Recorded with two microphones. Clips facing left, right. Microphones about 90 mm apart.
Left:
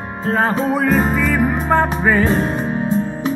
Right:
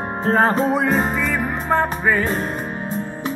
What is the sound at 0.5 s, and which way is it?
Music, centre (ahead or behind).